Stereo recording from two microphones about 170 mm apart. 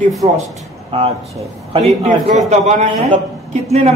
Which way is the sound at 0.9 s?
35° right (ahead or behind).